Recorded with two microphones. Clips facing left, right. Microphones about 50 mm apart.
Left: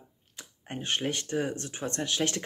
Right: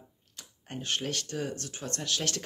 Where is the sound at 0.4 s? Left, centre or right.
Left.